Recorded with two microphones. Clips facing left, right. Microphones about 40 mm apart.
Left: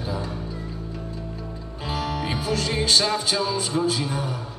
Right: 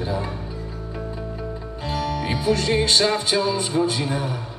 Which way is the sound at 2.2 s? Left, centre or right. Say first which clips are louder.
Right 4 dB; centre.